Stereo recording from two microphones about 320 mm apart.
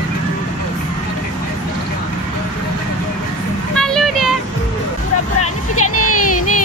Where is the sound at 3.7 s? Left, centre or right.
Centre.